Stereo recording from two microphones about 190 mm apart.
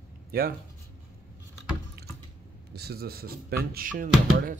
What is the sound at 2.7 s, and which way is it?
Speech, 55° right (ahead or behind).